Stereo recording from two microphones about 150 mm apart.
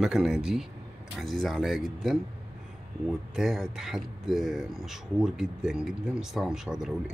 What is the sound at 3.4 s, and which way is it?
Speech, 5° right (ahead or behind).